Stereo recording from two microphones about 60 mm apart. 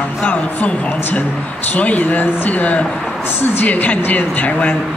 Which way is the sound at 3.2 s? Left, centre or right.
Left.